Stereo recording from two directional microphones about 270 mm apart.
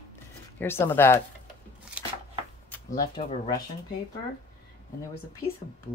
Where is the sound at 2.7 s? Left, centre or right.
Centre.